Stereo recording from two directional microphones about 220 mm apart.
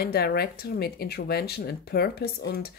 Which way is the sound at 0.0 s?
45° left (ahead or behind).